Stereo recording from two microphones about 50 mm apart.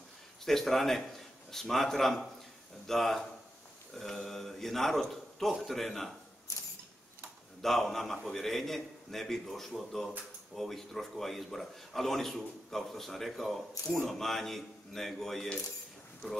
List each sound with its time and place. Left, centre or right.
0.5 s a man's voice: centre
6.5 s mechanisms: left
7.6 s a man's voice: centre